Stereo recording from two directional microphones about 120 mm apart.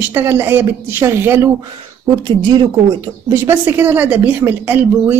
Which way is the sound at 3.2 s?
20° right (ahead or behind).